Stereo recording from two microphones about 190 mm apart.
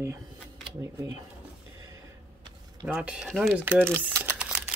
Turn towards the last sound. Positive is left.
turn(degrees=-5)  # may be behind; listen again after turning